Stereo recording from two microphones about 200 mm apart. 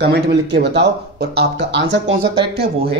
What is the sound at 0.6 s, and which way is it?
Speech, 55° right (ahead or behind).